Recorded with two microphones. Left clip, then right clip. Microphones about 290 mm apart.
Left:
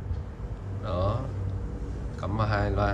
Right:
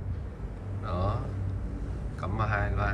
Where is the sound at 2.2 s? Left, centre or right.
Centre.